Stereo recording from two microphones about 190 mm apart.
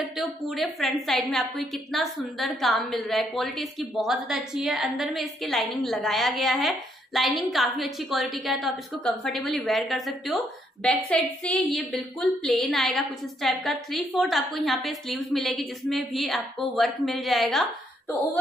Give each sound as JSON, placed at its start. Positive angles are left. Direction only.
{"t": 0.2, "sound": "a woman's voice", "side_deg": 0}